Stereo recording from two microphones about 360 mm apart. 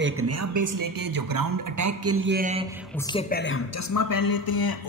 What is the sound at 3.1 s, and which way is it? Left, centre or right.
Speech, left.